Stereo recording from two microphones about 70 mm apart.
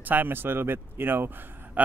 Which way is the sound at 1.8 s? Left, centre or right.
Right.